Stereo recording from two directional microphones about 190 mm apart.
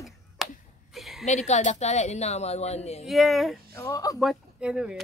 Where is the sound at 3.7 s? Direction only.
15° left (ahead or behind).